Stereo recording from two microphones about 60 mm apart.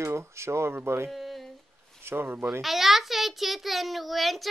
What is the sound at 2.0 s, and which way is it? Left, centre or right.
Speech, right.